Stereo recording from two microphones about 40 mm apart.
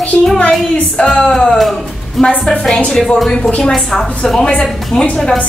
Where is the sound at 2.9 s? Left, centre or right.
Centre.